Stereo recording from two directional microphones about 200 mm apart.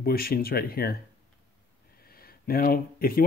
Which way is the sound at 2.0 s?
50° left (ahead or behind).